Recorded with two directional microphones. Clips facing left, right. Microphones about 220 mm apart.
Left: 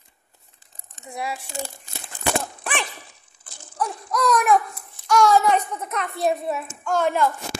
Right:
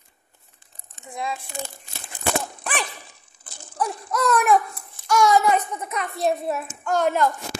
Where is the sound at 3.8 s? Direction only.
5° right (ahead or behind).